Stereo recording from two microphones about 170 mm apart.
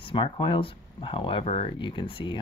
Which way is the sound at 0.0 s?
30° left (ahead or behind).